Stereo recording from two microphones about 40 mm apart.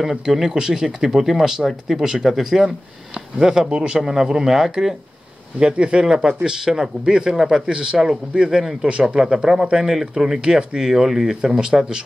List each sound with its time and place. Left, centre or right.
0.0 s speech: centre
5.6 s a man's voice: right